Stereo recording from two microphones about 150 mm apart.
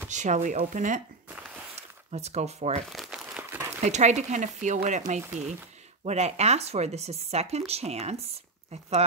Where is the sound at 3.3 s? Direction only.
15° right (ahead or behind).